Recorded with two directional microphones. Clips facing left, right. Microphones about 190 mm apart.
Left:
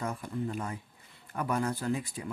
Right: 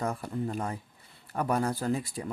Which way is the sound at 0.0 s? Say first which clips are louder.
Right 2 dB; 35° right (ahead or behind).